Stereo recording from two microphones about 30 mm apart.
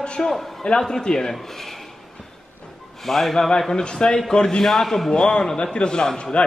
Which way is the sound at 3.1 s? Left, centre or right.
Centre.